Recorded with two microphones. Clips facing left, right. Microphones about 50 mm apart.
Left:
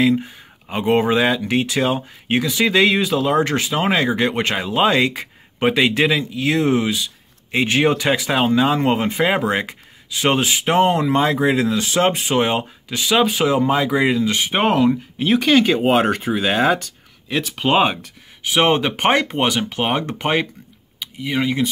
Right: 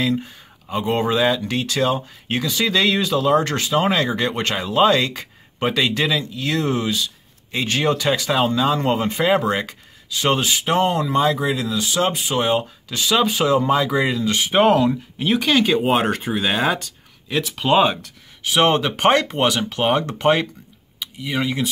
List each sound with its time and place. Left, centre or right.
0.0 s speech: centre
0.7 s speech: left
12.8 s speech: centre